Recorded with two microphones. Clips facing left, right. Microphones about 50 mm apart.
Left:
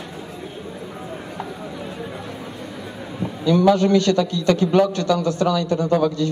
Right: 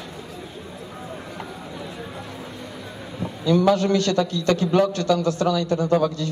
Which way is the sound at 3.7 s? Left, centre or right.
Left.